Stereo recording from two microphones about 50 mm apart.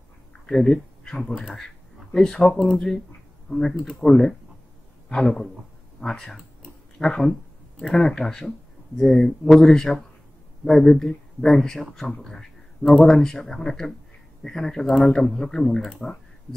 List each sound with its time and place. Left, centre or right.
0.5 s speech: centre
2.1 s speech: centre
2.5 s speech: centre
3.4 s speech: centre